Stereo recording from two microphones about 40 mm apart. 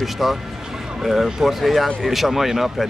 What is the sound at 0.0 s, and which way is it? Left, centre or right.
Speech, centre.